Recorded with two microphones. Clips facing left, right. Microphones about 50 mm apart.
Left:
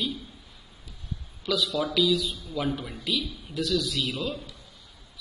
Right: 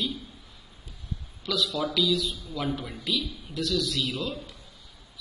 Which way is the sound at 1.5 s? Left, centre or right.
Centre.